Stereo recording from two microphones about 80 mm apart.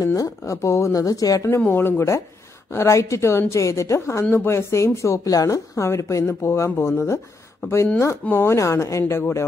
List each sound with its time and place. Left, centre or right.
0.0 s a woman's voice: left
1.0 s speech: left
1.7 s a woman's voice: left
9.0 s speech: left